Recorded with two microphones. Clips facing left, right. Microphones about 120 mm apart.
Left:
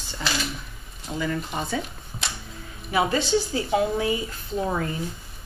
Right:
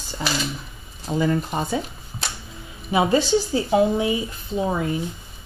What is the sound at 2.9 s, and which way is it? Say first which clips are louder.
A woman's voice: right 4 dB; 25° right (ahead or behind).